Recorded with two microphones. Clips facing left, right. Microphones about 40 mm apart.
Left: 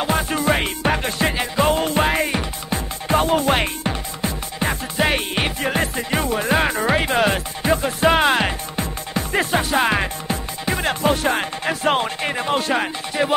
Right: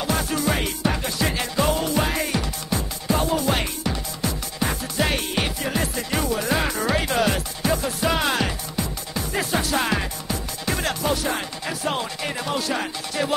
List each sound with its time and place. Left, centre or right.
0.0 s music: left
1.3 s music: left
1.7 s music: left